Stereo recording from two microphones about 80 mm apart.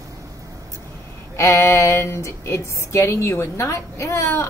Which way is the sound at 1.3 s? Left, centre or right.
Left.